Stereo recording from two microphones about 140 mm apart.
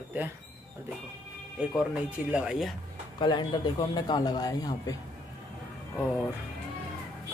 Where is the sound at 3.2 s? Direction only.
30° left (ahead or behind).